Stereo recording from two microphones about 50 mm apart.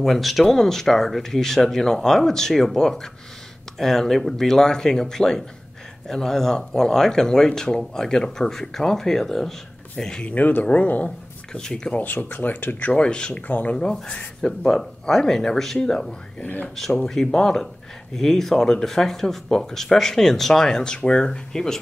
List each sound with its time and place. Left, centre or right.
0.0 s speech: centre
10.3 s speech: left
11.5 s speech: centre
12.0 s speech: left
12.9 s speech: centre
13.5 s speech: left
13.9 s speech: centre